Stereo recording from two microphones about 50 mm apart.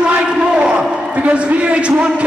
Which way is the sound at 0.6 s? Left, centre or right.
Centre.